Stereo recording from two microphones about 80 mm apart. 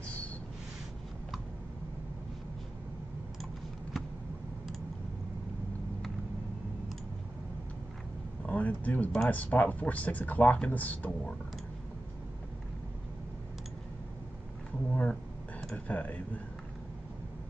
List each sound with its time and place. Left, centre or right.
8.4 s vehicle: centre
9.3 s speech: left
14.9 s a sound: centre